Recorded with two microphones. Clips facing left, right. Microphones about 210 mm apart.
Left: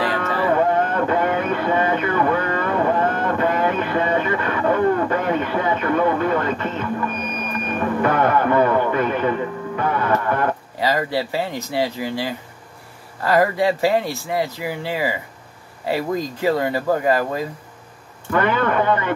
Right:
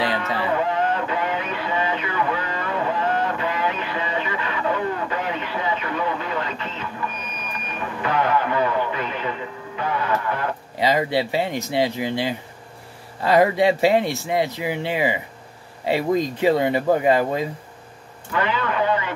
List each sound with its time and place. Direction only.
0.2 s vehicle: 50° left (ahead or behind)
10.8 s speech: 20° right (ahead or behind)
18.3 s speech: 50° left (ahead or behind)